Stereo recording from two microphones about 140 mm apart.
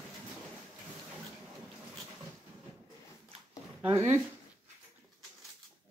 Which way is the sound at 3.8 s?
20° right (ahead or behind).